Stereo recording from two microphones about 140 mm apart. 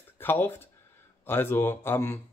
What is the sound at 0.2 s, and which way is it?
Speech, 15° left (ahead or behind).